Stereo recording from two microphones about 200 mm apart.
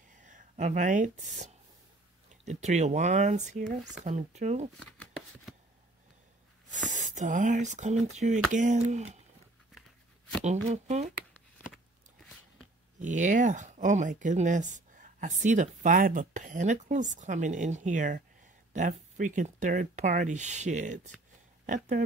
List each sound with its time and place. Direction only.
0.1 s speech: 40° right (ahead or behind)
4.7 s shuffling cards: 5° left (ahead or behind)
6.7 s speech: 40° right (ahead or behind)
10.4 s speech: 35° right (ahead or behind)
13.0 s speech: 40° right (ahead or behind)